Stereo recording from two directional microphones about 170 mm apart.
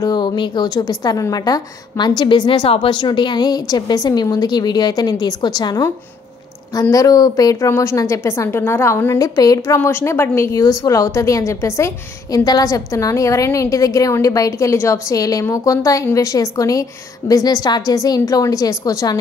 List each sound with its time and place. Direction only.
0.0 s a woman's voice: 25° left (ahead or behind)